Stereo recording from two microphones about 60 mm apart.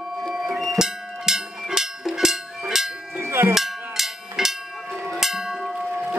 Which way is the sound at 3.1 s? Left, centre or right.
Right.